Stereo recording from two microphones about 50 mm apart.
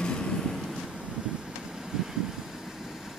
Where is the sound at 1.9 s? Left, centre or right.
Centre.